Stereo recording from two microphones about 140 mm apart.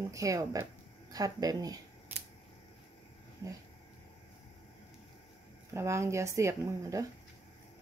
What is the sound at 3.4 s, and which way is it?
Speech, 25° right (ahead or behind).